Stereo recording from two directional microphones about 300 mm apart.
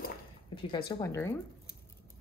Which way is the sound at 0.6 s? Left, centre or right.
Centre.